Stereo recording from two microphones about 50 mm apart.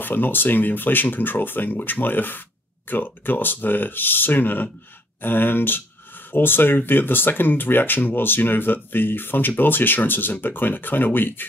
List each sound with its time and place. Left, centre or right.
0.0 s speech: left